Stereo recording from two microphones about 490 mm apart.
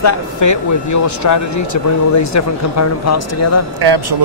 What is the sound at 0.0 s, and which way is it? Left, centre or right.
Speech, left.